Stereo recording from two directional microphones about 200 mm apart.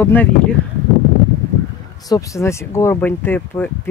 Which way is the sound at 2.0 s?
15° left (ahead or behind).